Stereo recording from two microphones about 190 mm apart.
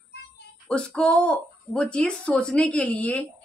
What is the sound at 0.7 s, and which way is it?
Speech, 5° left (ahead or behind).